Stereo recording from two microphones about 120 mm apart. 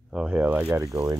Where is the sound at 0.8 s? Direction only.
25° right (ahead or behind).